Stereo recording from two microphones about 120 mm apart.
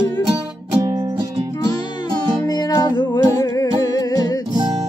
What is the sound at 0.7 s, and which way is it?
Music, 30° right (ahead or behind).